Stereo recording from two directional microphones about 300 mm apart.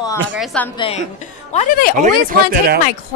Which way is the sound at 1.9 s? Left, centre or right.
Right.